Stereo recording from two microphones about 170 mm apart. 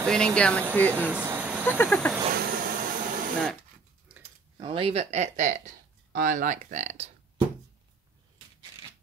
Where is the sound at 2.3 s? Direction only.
60° right (ahead or behind).